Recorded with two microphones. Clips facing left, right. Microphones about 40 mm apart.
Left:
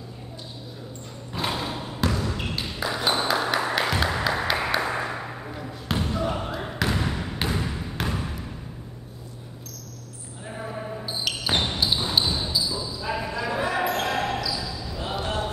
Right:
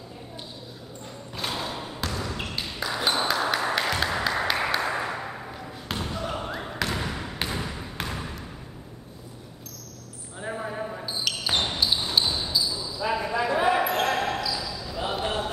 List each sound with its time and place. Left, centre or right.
1.3 s a sound: centre
2.1 s basketball bounce: centre
2.6 s a sound: centre
11.1 s basketball bounce: centre
13.0 s basketball bounce: centre
14.1 s basketball bounce: centre
15.0 s basketball bounce: centre